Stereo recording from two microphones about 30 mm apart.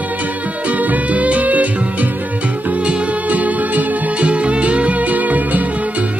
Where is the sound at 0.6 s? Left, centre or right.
Right.